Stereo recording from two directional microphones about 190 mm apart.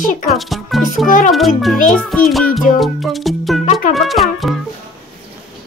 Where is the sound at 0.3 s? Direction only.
Centre (ahead or behind).